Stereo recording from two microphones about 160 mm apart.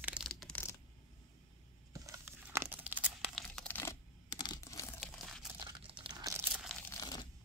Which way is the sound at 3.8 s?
20° left (ahead or behind).